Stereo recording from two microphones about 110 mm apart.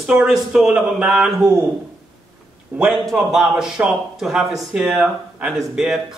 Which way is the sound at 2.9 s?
Centre (ahead or behind).